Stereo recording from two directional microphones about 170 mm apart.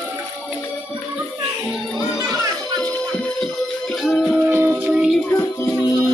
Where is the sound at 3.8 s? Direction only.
Centre (ahead or behind).